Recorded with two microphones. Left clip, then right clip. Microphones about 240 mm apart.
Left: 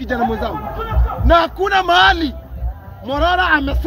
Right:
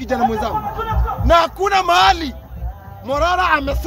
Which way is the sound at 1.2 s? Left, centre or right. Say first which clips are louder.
Even; centre.